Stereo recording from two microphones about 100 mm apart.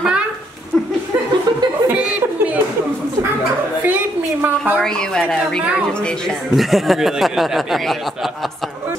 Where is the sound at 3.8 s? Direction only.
20° right (ahead or behind).